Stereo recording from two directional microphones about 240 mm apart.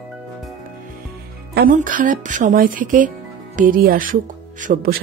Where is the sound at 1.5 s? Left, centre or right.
Right.